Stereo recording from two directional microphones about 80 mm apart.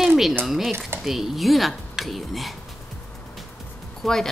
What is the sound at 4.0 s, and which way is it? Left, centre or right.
Speech, centre.